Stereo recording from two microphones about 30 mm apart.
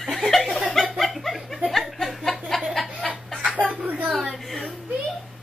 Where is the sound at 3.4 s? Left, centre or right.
Right.